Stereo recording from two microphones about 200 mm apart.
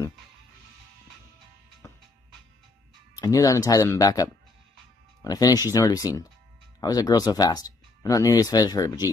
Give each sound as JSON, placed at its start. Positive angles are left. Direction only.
{"t": 3.2, "sound": "speech", "side_deg": 15}